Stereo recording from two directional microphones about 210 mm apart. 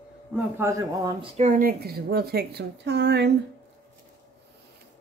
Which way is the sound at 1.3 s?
35° right (ahead or behind).